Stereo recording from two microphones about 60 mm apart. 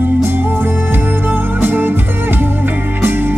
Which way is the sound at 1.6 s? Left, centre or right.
Right.